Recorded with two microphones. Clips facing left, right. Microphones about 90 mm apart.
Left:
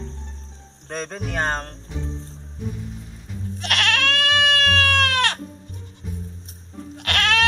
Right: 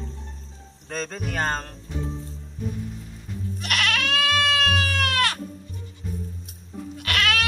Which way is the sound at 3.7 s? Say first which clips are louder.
Left 3 dB; 90° left.